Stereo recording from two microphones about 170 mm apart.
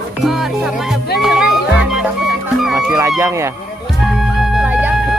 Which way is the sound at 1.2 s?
Centre (ahead or behind).